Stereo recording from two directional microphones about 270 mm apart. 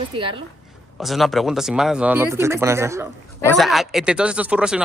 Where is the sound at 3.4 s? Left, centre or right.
Centre.